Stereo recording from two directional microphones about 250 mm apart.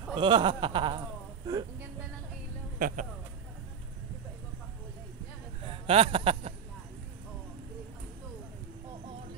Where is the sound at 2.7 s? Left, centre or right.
Right.